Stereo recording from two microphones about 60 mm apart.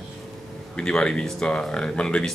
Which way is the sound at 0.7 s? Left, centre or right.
Centre.